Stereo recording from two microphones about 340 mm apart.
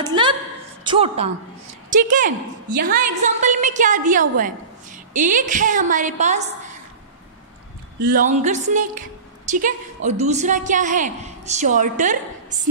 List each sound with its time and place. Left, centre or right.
0.0 s a sound: centre
0.8 s a woman's voice: centre
8.0 s a woman's voice: right